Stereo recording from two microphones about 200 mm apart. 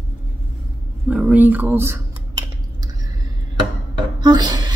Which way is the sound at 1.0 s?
5° right (ahead or behind).